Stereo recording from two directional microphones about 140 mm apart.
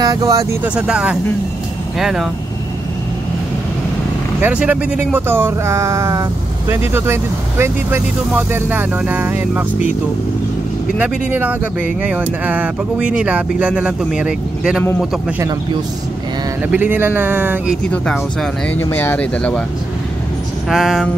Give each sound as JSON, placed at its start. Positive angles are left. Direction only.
{"t": 0.0, "sound": "speech", "side_deg": -25}
{"t": 0.7, "sound": "speech", "side_deg": -5}
{"t": 4.4, "sound": "speech", "side_deg": -10}
{"t": 11.0, "sound": "speech", "side_deg": -10}
{"t": 16.6, "sound": "speech", "side_deg": -10}
{"t": 18.8, "sound": "speech", "side_deg": 15}
{"t": 20.6, "sound": "speech", "side_deg": -5}